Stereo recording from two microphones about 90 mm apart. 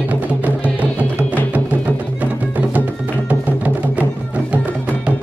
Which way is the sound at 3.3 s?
15° right (ahead or behind).